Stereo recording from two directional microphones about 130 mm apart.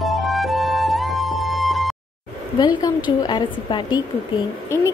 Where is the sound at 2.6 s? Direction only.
35° left (ahead or behind).